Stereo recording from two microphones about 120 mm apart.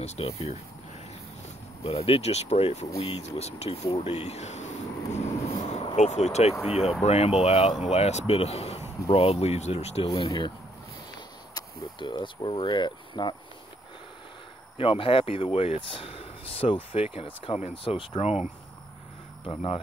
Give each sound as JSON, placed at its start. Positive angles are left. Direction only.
{"t": 0.0, "sound": "speech", "side_deg": 65}
{"t": 1.8, "sound": "speech", "side_deg": 55}
{"t": 4.0, "sound": "vehicle", "side_deg": 65}
{"t": 5.9, "sound": "speech", "side_deg": 65}
{"t": 10.1, "sound": "speech", "side_deg": 45}
{"t": 11.5, "sound": "speech", "side_deg": 40}
{"t": 14.8, "sound": "speech", "side_deg": 50}
{"t": 17.9, "sound": "speech", "side_deg": 45}
{"t": 19.4, "sound": "speech", "side_deg": 50}